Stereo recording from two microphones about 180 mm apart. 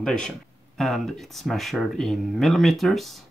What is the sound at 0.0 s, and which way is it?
Speech, 5° left (ahead or behind).